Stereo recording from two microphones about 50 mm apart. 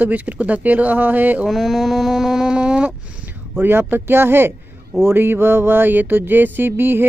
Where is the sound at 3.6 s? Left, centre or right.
Right.